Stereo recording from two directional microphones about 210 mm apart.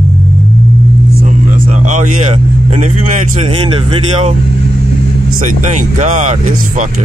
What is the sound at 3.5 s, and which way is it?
Speech, 25° right (ahead or behind).